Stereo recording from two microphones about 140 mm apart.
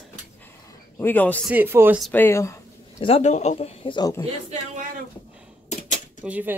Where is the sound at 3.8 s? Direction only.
30° left (ahead or behind).